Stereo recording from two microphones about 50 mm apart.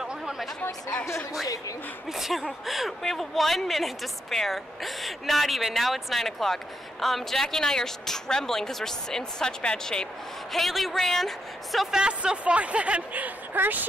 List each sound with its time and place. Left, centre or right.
0.0 s chatter: centre
2.1 s a woman's voice: centre
10.5 s speech: centre
11.9 s speech: centre; by 13.8 s right